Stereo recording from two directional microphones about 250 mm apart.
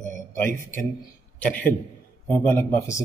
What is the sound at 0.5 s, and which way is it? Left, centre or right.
Speech, right.